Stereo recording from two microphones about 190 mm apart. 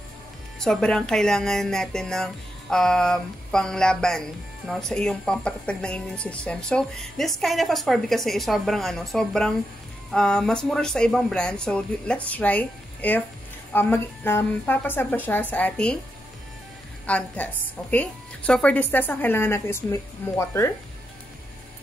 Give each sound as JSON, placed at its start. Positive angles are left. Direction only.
{"t": 0.6, "sound": "a woman's voice", "side_deg": 0}
{"t": 17.0, "sound": "a woman's voice", "side_deg": 5}